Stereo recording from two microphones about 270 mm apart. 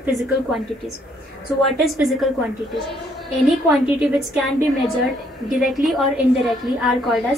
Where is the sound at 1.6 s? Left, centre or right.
Centre.